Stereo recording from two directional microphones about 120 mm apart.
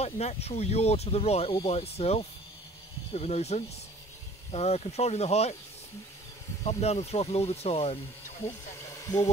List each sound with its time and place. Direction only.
0.0 s speech: 60° left (ahead or behind)
6.6 s speech: 60° left (ahead or behind)
8.9 s a sound: 30° left (ahead or behind)